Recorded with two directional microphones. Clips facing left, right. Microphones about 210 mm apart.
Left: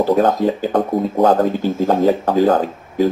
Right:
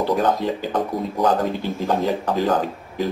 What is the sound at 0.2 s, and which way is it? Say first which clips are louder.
Speech: left 5 dB; 45° left (ahead or behind).